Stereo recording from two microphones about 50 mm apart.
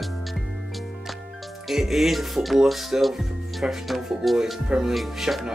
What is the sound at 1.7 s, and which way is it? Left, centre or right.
Speech, centre.